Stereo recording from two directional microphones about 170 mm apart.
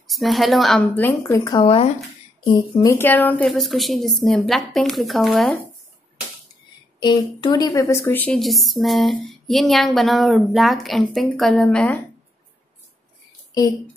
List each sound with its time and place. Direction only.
0.0 s a woman's voice: centre (ahead or behind); by 1.5 s 15° left (ahead or behind)
1.5 s speech: 35° left (ahead or behind)
2.8 s a woman's voice: 15° left (ahead or behind)
7.0 s a woman's voice: 25° left (ahead or behind); by 12.0 s 5° left (ahead or behind)